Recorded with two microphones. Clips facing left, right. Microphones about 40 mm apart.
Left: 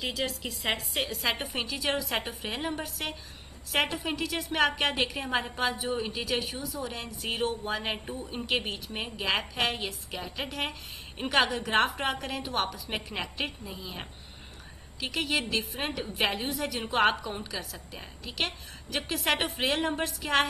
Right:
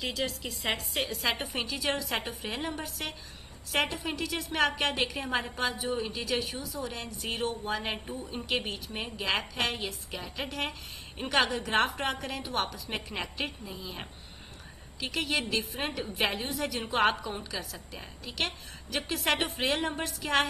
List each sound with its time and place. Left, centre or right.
0.0 s a woman's voice: centre